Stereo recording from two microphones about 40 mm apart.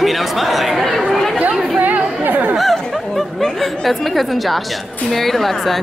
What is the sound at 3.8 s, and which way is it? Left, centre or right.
A woman's voice, centre.